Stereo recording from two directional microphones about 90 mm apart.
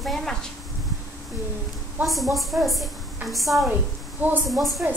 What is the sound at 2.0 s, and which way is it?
Speech, centre (ahead or behind).